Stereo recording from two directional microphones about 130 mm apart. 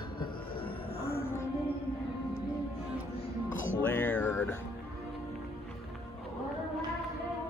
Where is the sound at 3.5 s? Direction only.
15° left (ahead or behind).